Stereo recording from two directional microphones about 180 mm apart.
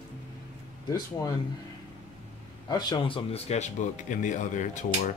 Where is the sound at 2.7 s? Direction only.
25° left (ahead or behind).